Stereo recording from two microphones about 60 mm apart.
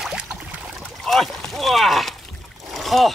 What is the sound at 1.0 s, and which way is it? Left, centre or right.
Rowboat, centre.